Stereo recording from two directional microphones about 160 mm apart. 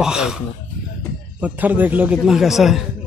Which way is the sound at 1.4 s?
10° right (ahead or behind).